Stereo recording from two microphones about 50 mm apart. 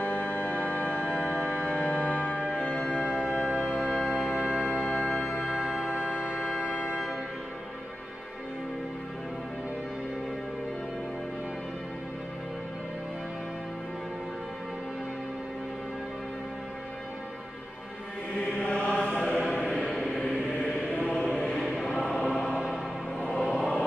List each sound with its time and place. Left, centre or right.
0.0 s organ: left
2.5 s music: centre
2.9 s music: centre
3.8 s brass instrument: centre
4.4 s music: centre
4.6 s music: centre
5.2 s music: centre
18.6 s chant: left
21.3 s chant: centre
21.5 s choir: centre
21.9 s choir: left
23.1 s music: left
23.4 s music: centre